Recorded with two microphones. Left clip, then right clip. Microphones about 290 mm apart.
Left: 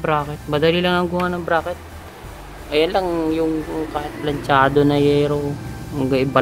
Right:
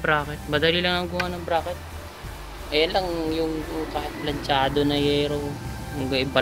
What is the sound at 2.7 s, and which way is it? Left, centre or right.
Speech, left.